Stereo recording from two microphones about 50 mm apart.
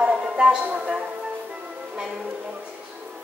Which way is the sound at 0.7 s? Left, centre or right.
Right.